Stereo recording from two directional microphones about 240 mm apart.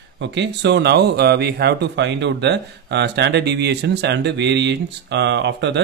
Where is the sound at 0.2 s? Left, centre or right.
Right.